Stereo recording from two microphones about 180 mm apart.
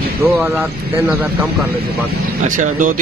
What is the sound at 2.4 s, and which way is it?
Speech, 45° right (ahead or behind).